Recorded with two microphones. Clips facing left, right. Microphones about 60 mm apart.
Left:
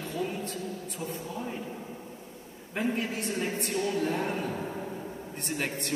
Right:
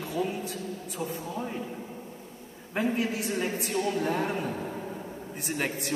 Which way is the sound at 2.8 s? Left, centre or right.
Centre.